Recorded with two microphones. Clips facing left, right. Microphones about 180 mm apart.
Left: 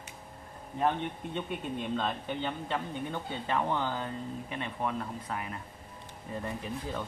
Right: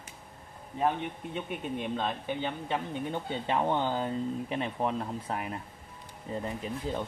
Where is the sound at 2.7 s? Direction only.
20° right (ahead or behind).